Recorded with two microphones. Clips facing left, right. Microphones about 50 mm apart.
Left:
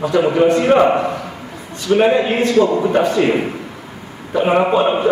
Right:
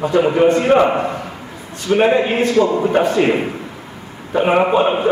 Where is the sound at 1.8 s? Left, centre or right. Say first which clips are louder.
Even; right.